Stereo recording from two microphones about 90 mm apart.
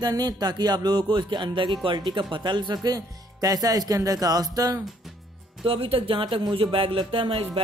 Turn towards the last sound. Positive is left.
turn(degrees=-80)